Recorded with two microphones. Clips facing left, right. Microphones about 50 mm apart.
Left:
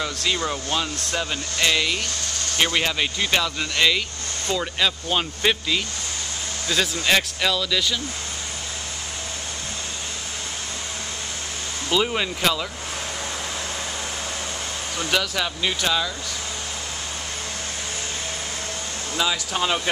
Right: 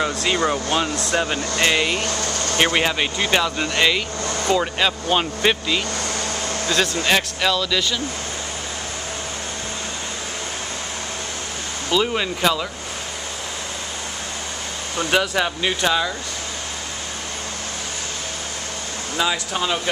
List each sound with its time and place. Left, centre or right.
0.0 s speech: right; by 8.0 s centre
11.9 s speech: centre
15.0 s speech: right
19.5 s speech: centre